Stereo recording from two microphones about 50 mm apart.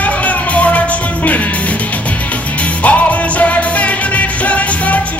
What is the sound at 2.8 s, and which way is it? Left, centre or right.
Music, left.